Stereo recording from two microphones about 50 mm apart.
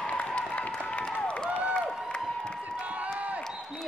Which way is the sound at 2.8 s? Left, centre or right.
Right.